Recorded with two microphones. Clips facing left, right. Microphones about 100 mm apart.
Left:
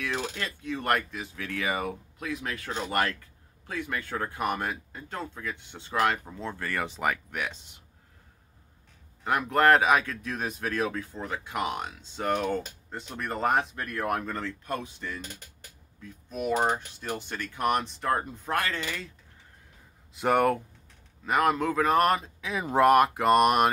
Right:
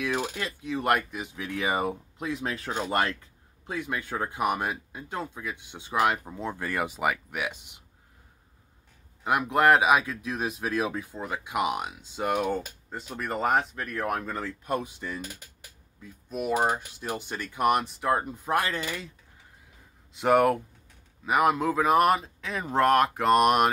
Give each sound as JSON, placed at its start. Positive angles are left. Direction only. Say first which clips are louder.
{"t": 0.0, "sound": "speech", "louder": "right 3 dB", "side_deg": -15}
{"t": 9.2, "sound": "speech", "louder": "right 1 dB", "side_deg": -10}
{"t": 20.2, "sound": "speech", "louder": "right 2 dB", "side_deg": 0}